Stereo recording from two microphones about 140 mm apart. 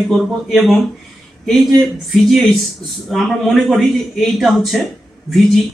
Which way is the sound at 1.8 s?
Centre (ahead or behind).